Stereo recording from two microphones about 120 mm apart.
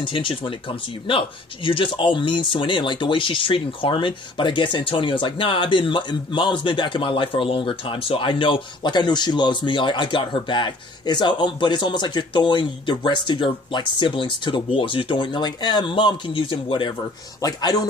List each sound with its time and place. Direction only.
0.0 s speech: 45° left (ahead or behind)
17.4 s speech: 35° left (ahead or behind)